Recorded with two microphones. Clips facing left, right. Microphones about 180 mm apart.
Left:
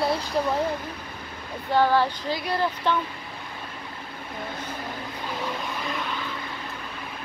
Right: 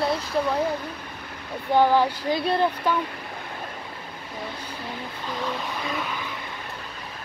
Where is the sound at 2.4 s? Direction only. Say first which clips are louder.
Right 4 dB; 25° right (ahead or behind).